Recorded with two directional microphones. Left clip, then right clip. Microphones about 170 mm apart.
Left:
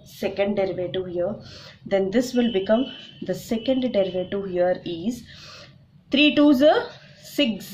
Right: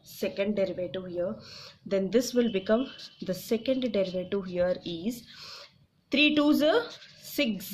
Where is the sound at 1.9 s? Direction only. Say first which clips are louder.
Left 4 dB; 45° right (ahead or behind).